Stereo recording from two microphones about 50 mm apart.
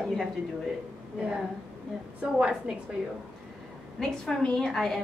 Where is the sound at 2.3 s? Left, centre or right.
Right.